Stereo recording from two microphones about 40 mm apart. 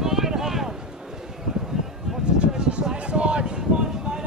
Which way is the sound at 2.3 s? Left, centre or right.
Right.